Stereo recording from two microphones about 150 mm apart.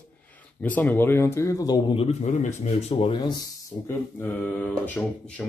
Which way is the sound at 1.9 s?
45° left (ahead or behind).